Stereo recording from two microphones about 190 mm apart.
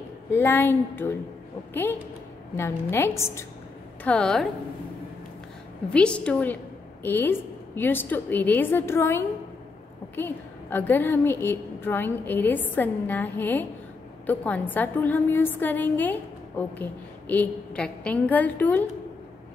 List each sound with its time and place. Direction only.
0.3 s a woman's voice: 10° left (ahead or behind)
5.9 s a woman's voice: 5° left (ahead or behind)